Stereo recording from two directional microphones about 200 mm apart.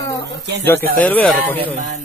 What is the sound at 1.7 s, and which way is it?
Speech, 40° right (ahead or behind).